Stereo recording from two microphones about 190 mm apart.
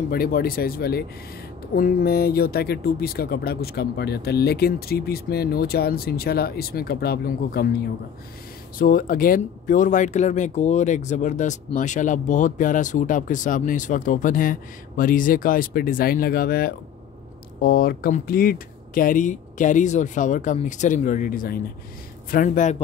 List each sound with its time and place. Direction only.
0.1 s speech: 50° left (ahead or behind)
8.7 s speech: 50° left (ahead or behind)